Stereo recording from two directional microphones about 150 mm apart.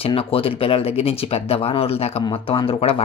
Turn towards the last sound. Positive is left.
turn(degrees=40)  # may be behind; listen again after turning